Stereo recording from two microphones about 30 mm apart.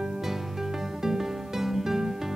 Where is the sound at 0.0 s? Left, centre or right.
Centre.